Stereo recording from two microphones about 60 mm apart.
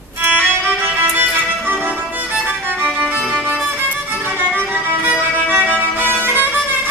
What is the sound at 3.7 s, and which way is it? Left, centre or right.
Music, right.